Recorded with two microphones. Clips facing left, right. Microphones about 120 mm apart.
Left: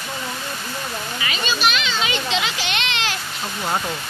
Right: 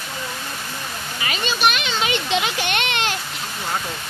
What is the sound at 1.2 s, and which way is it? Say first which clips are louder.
A child's voice: right 2 dB; 50° right (ahead or behind).